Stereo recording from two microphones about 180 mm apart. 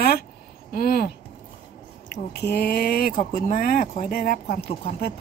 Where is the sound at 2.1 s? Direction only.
65° left (ahead or behind).